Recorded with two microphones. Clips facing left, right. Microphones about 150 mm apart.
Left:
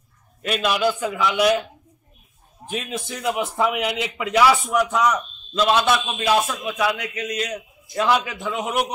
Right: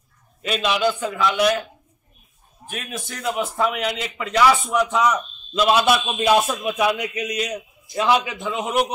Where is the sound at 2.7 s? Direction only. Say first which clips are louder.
Left 4 dB; 15° left (ahead or behind).